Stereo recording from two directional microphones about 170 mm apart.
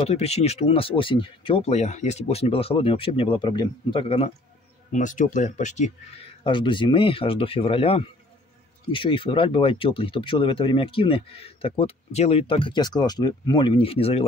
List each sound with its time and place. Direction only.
0.0 s speech: 40° left (ahead or behind)
4.9 s speech: 50° left (ahead or behind)